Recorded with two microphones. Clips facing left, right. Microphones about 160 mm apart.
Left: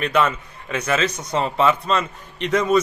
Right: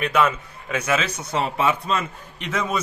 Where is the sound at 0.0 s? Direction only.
10° right (ahead or behind).